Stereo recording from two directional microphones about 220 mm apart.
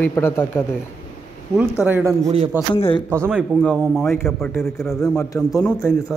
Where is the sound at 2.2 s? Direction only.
30° right (ahead or behind).